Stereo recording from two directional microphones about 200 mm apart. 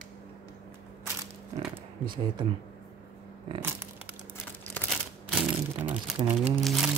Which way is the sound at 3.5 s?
25° right (ahead or behind).